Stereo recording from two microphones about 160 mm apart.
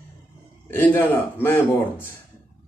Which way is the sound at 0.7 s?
15° left (ahead or behind).